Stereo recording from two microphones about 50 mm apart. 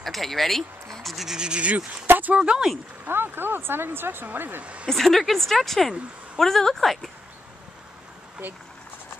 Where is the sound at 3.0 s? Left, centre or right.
Right.